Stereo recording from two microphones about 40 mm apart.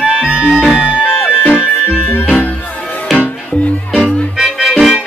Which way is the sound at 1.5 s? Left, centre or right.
Left.